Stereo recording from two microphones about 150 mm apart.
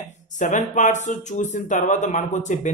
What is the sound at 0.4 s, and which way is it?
Speech, 55° left (ahead or behind).